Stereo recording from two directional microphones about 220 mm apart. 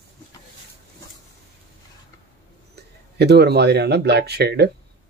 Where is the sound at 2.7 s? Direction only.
50° right (ahead or behind).